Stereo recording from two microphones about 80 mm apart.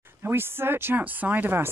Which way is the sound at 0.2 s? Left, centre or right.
Right.